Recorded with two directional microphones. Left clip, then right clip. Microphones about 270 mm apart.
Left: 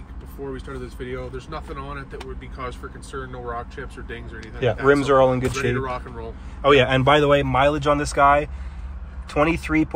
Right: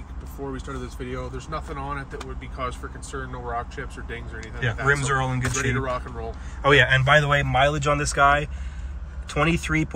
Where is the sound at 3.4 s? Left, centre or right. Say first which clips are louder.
Right 1 dB; centre.